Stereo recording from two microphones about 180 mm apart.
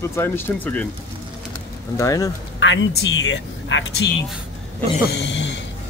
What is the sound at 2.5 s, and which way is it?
Speech, 90° left.